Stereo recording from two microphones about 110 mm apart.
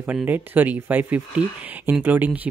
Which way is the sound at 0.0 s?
15° right (ahead or behind).